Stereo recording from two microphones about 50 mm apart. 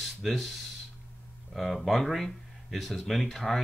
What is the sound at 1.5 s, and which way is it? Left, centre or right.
Speech, centre.